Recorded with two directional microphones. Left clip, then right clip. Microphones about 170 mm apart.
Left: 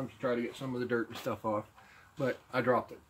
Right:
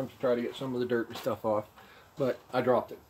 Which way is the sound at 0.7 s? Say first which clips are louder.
Right 3 dB; 20° left (ahead or behind).